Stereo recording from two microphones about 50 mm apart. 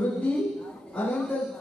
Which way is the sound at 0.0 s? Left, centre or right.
Left.